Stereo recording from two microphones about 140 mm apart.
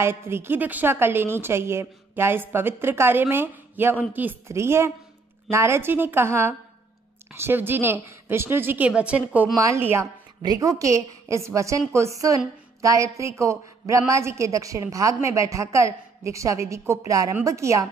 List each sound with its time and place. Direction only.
0.0 s a woman's voice: 15° right (ahead or behind)